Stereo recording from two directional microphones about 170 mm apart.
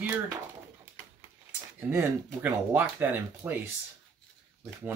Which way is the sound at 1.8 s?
10° right (ahead or behind).